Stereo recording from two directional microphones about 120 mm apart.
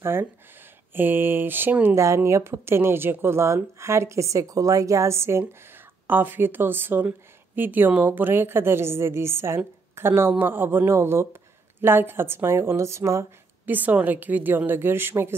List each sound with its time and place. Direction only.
0.0 s a woman's voice: 20° right (ahead or behind)